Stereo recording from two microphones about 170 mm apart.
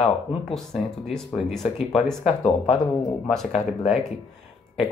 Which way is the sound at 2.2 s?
35° left (ahead or behind).